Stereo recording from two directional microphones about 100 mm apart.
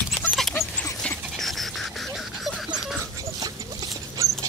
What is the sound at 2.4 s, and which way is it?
Dog, centre (ahead or behind).